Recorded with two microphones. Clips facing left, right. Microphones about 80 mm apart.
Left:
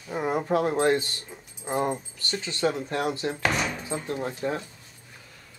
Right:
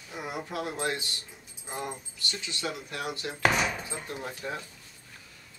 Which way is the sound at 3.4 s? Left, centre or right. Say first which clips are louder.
Right 2 dB; centre.